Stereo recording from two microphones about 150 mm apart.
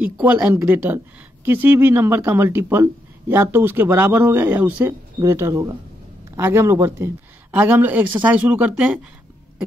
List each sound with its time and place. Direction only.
0.0 s a woman's voice: 10° right (ahead or behind)